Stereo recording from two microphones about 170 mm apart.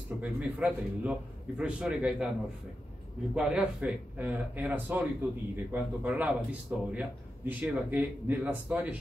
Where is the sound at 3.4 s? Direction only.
5° right (ahead or behind).